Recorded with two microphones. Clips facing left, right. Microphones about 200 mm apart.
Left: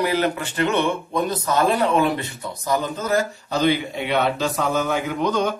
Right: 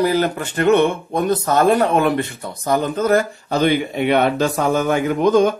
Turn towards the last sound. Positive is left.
turn(degrees=-50)  # may be behind; listen again after turning